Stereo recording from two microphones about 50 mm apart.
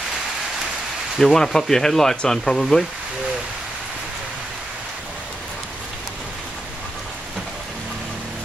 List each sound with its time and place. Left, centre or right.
1.1 s speech: centre